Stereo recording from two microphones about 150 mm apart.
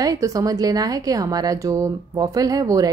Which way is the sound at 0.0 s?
25° right (ahead or behind).